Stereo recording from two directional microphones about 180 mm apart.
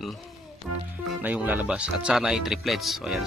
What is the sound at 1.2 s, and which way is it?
Speech, 10° right (ahead or behind).